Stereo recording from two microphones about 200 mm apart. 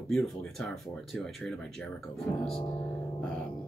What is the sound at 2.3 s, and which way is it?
Speech, 25° left (ahead or behind).